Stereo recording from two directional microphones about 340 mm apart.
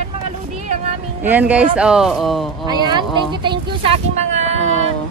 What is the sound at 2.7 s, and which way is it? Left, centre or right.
Speech, centre.